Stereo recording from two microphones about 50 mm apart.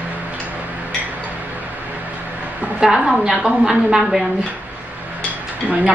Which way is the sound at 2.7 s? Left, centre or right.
Centre.